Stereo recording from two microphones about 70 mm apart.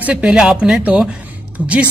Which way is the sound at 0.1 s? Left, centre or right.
Centre.